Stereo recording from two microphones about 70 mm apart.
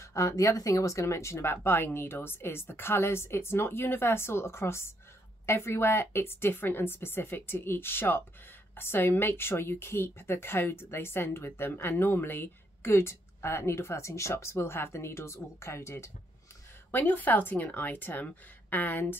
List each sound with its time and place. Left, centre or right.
0.0 s speech: left
16.9 s speech: left